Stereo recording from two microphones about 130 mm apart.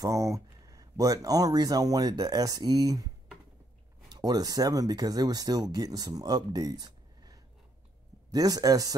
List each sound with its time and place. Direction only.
0.0 s speech: 25° right (ahead or behind)
4.1 s speech: 30° right (ahead or behind)